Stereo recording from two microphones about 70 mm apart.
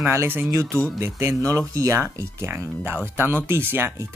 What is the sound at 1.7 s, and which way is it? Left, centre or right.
Speech, right.